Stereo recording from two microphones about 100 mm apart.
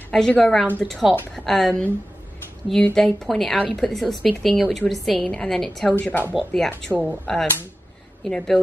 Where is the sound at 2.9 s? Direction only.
5° left (ahead or behind).